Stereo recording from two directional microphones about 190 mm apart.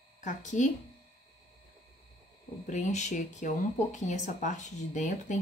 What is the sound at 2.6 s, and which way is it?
Speech, 40° left (ahead or behind).